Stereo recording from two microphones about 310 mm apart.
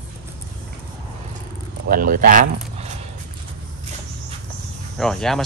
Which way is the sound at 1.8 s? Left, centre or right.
Right.